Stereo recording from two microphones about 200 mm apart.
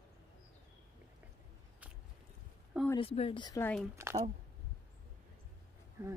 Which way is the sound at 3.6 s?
5° left (ahead or behind).